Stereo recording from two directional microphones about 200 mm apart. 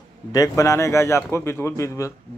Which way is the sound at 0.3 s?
15° left (ahead or behind).